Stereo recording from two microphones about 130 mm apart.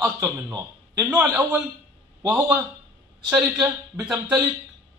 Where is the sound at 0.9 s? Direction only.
15° right (ahead or behind).